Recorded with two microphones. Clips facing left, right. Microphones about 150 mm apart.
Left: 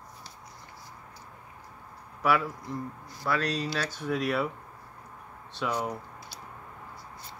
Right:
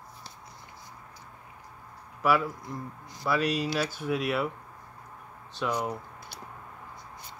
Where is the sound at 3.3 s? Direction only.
10° right (ahead or behind).